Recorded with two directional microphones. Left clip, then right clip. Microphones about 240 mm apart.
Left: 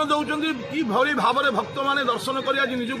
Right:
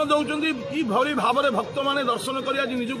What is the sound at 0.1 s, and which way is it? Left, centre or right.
A man's voice, right.